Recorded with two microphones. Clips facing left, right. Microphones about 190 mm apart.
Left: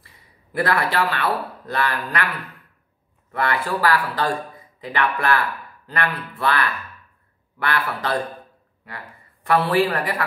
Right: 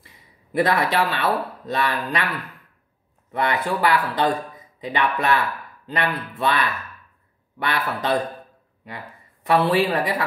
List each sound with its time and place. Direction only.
0.0 s a sound: 20° right (ahead or behind)
1.7 s speech: 20° right (ahead or behind)
3.3 s speech: 20° right (ahead or behind)